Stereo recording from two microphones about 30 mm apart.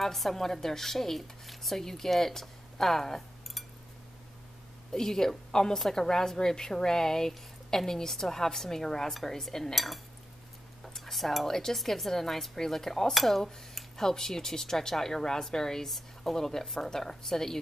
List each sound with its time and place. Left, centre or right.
0.0 s speech: centre
4.9 s a woman's voice: centre
11.0 s cutlery: centre
11.4 s speech: centre
13.1 s speech: centre
13.4 s speech: centre